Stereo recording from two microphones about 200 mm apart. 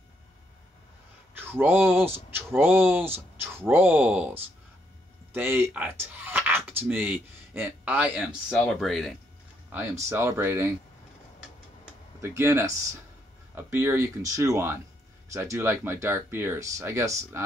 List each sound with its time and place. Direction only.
1.3 s speech: 10° right (ahead or behind)
9.7 s speech: 10° right (ahead or behind)
12.2 s speech: 15° right (ahead or behind)